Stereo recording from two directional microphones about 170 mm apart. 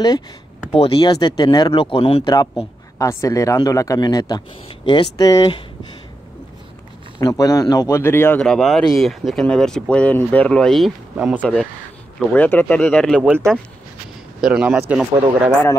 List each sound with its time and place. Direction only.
0.7 s speech: 30° left (ahead or behind)
7.2 s speech: 20° left (ahead or behind); by 11.4 s 5° right (ahead or behind)
12.2 s speech: 10° left (ahead or behind)
14.4 s speech: 5° right (ahead or behind)